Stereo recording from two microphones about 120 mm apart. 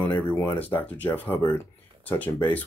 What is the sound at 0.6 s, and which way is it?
Speech, 15° left (ahead or behind).